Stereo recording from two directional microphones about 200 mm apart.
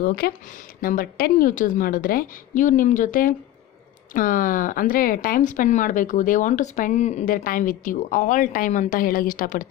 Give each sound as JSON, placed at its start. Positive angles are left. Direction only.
{"t": 0.0, "sound": "a woman's voice", "side_deg": 50}